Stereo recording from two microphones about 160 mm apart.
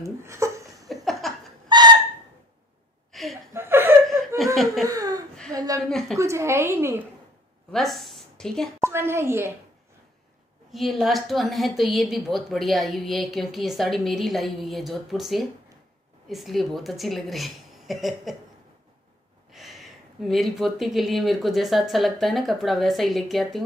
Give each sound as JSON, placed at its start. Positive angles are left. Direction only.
{"t": 0.0, "sound": "a sound", "side_deg": -15}
{"t": 0.8, "sound": "laughter", "side_deg": 0}
{"t": 1.7, "sound": "owl", "side_deg": -25}
{"t": 3.1, "sound": "a sound", "side_deg": 0}
{"t": 3.5, "sound": "chuckle", "side_deg": -15}
{"t": 4.8, "sound": "a sound", "side_deg": -20}
{"t": 5.9, "sound": "a woman's voice", "side_deg": 5}
{"t": 6.1, "sound": "a woman's voice", "side_deg": -15}
{"t": 7.7, "sound": "a sound", "side_deg": 0}
{"t": 8.8, "sound": "a woman's voice", "side_deg": -15}
{"t": 10.7, "sound": "a woman's voice", "side_deg": 0}
{"t": 19.5, "sound": "a woman's voice", "side_deg": 0}